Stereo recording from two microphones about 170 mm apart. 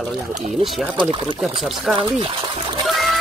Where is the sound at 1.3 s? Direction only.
5° right (ahead or behind).